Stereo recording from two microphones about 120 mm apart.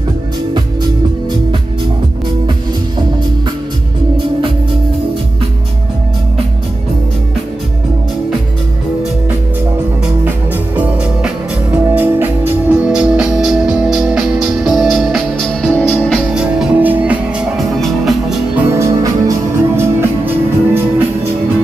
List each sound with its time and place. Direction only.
10.8 s music: 10° right (ahead or behind); by 16.2 s 10° left (ahead or behind)
16.3 s music: 5° right (ahead or behind)
17.6 s music: centre (ahead or behind)
18.7 s music: 25° right (ahead or behind)